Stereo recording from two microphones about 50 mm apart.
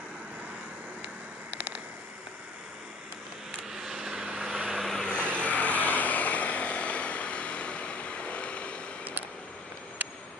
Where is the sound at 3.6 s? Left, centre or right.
Centre.